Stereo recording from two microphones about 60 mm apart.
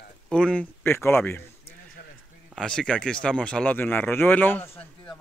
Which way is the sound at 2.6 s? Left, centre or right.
Centre.